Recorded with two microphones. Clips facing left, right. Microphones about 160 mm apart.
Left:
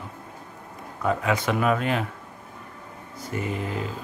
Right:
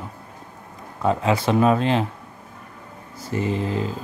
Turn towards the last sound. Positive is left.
turn(degrees=-30)  # may be behind; listen again after turning